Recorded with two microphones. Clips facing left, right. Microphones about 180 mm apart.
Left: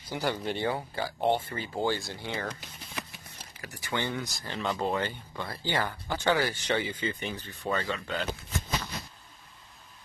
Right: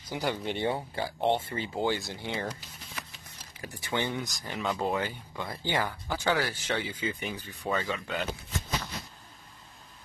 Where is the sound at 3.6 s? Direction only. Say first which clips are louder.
Right 1 dB; 20° right (ahead or behind).